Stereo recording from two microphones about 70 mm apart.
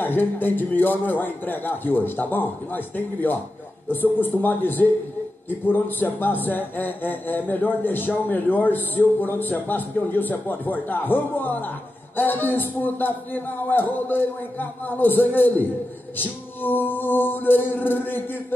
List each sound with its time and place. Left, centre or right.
0.0 s speech: left